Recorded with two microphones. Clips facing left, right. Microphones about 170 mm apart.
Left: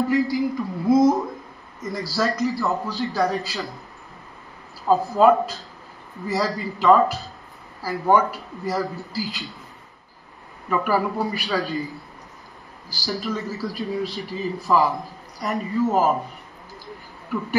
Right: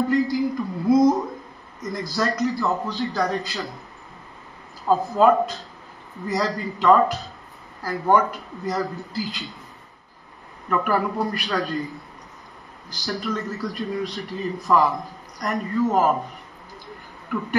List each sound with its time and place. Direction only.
0.1 s a sound: 5° left (ahead or behind)
1.8 s a man's voice: 5° left (ahead or behind)
4.8 s a man's voice: 5° left (ahead or behind)
10.7 s a man's voice: 5° left (ahead or behind)
12.9 s a man's voice: 5° left (ahead or behind)